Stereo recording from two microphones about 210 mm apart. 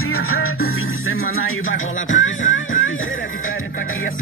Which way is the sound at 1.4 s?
70° left (ahead or behind).